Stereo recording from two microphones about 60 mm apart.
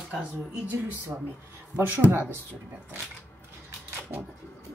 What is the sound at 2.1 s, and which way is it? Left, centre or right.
Speech, right.